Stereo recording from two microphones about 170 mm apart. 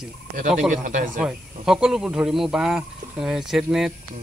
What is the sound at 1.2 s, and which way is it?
Speech, 5° right (ahead or behind).